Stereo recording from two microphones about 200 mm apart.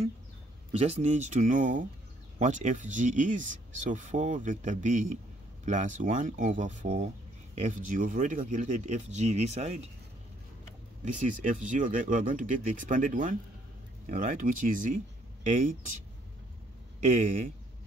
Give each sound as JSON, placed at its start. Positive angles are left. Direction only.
{"t": 0.7, "sound": "speech", "side_deg": -30}
{"t": 11.1, "sound": "speech", "side_deg": -40}